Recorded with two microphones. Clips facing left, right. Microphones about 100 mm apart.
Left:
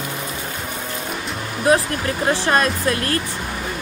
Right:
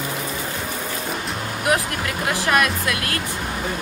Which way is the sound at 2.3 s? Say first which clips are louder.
Left 2 dB; 30° left (ahead or behind).